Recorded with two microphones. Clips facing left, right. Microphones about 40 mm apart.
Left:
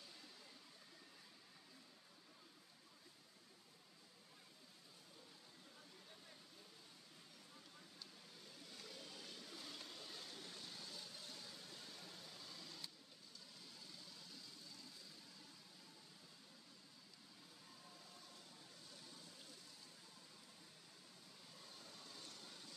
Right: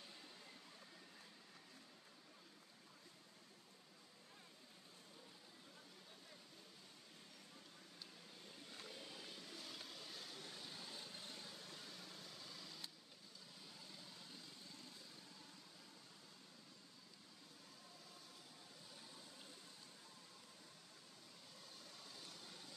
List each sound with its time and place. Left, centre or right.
8.7 s vehicle: centre
9.6 s vehicle: centre; by 11.4 s right
11.5 s vehicle: centre
21.8 s vehicle: centre